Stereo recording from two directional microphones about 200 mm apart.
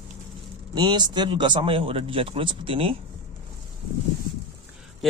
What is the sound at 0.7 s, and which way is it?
A man's voice, 20° right (ahead or behind).